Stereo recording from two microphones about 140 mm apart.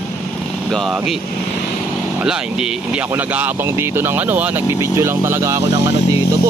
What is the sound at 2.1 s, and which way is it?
Speech, 5° right (ahead or behind).